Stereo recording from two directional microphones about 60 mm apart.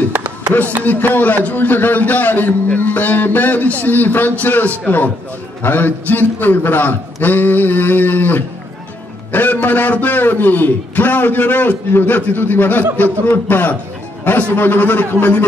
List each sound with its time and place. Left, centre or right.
0.8 s a man's voice: left